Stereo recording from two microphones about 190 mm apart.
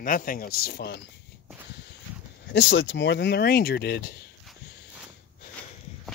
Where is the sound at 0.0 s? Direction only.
45° left (ahead or behind).